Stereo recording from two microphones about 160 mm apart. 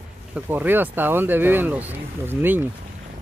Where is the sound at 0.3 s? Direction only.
10° right (ahead or behind).